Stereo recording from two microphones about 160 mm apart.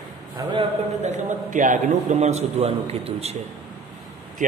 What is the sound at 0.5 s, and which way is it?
A man's voice, 45° right (ahead or behind).